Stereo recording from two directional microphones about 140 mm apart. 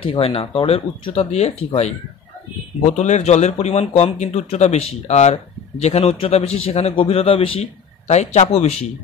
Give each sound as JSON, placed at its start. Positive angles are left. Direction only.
{"t": 0.0, "sound": "speech", "side_deg": 40}
{"t": 8.1, "sound": "speech", "side_deg": 55}